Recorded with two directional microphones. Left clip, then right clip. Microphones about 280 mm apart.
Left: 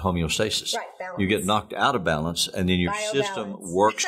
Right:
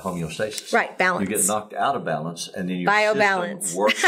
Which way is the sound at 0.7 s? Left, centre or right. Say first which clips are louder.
Right 12 dB; right.